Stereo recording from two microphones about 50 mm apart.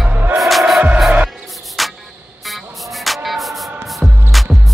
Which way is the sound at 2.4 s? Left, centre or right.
Centre.